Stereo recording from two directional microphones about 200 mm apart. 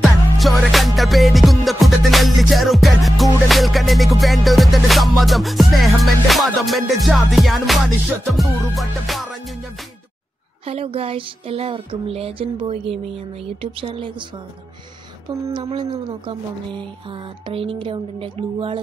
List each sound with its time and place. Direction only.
0.0 s music: centre (ahead or behind)
10.6 s speech: 30° right (ahead or behind)
15.2 s speech: 25° right (ahead or behind)